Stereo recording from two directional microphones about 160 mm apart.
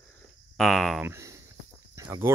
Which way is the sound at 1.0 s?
20° right (ahead or behind).